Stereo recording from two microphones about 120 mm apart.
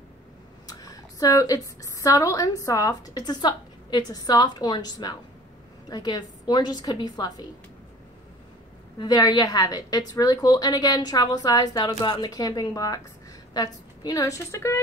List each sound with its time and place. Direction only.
0.7 s a woman's voice: 30° left (ahead or behind)
8.9 s a woman's voice: 35° left (ahead or behind)